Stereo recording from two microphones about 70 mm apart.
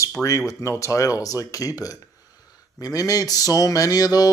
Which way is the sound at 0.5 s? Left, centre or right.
Left.